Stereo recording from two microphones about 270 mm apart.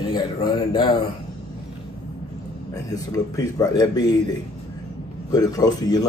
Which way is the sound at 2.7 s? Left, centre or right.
Centre.